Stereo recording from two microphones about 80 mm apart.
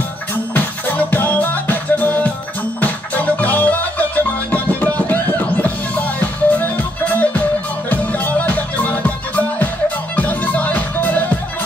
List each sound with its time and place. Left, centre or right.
0.3 s music: left